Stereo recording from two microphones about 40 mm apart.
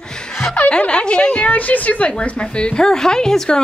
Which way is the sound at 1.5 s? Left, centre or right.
Left.